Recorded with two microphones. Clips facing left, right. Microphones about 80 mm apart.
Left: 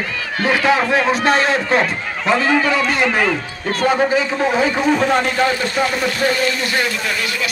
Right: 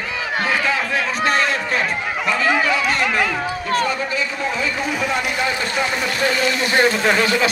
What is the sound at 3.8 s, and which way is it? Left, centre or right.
A man's voice, left.